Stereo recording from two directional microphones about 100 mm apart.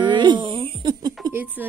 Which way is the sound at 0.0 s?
50° right (ahead or behind).